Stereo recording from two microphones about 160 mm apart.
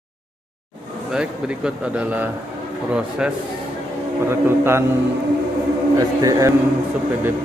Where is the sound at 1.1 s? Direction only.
5° right (ahead or behind).